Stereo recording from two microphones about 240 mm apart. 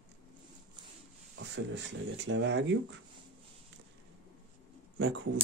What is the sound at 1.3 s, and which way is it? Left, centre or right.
Speech, right.